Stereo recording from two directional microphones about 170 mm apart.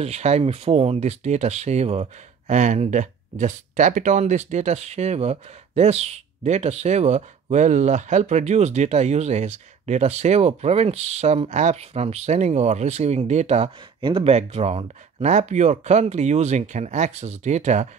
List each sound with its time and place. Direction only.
0.0 s speech: 40° right (ahead or behind)